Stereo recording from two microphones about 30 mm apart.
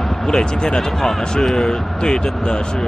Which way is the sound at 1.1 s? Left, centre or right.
Centre.